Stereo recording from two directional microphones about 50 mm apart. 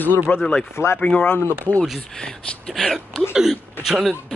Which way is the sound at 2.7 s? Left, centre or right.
Centre.